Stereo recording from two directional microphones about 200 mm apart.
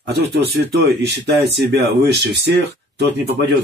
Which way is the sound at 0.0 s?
55° right (ahead or behind).